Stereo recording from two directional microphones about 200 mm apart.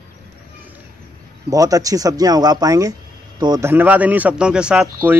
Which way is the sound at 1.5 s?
15° right (ahead or behind).